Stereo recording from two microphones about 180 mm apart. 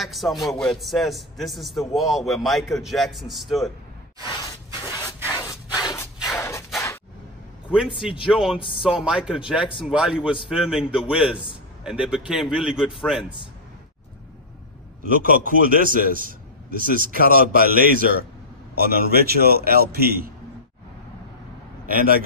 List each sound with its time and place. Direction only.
0.0 s a man's voice: centre (ahead or behind)
5.3 s rub: 20° left (ahead or behind)
5.8 s a sound: 20° left (ahead or behind)
8.3 s a man's voice: centre (ahead or behind)
15.0 s a man's voice: 50° right (ahead or behind)
21.8 s a man's voice: 50° right (ahead or behind)